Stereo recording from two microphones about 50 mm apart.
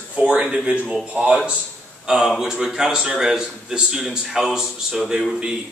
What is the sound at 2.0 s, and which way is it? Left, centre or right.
A man's voice, centre.